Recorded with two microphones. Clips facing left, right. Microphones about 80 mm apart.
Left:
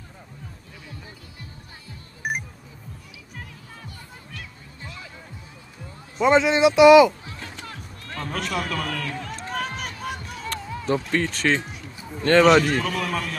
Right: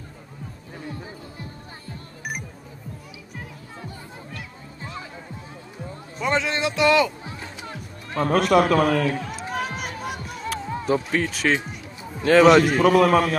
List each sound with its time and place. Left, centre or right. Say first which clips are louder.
2.2 s music: left 4 dB; left
6.2 s speech: left 7 dB; centre
7.2 s music: right 2 dB; centre
8.2 s a man's voice: right 11 dB; right
8.7 s speech: right 10 dB; right
9.2 s run: right 1 dB; centre
10.9 s speech: even; centre
12.8 s a man's voice: right 11 dB; right